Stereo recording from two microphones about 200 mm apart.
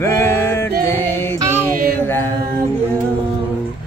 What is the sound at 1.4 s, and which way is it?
Music, 10° right (ahead or behind).